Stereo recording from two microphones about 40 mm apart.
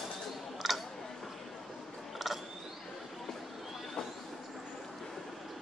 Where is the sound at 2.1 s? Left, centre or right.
Centre.